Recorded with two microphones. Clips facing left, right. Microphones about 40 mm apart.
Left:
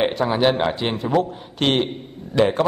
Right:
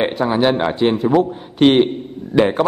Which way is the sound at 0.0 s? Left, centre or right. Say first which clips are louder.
Right 2 dB; centre.